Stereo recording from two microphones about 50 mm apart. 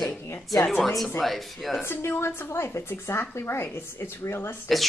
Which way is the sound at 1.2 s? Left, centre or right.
Centre.